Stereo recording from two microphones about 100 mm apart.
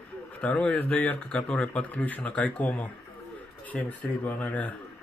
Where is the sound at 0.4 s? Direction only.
10° left (ahead or behind).